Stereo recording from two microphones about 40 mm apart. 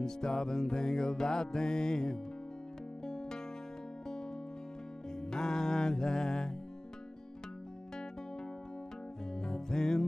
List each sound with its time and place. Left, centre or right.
0.0 s music: centre
5.1 s music: centre
7.9 s music: centre